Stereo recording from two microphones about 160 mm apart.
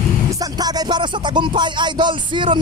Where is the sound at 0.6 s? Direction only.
25° right (ahead or behind).